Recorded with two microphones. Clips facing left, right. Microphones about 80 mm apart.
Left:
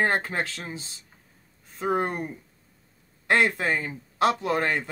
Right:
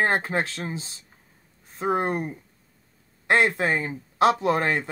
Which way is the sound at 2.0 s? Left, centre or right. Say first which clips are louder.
Right 2 dB; right.